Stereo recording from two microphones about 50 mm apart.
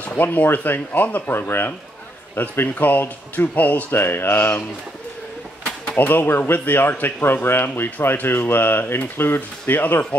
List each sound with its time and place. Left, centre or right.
0.0 s speech: left
2.4 s speech: left
3.9 s speech: left
5.9 s speech: left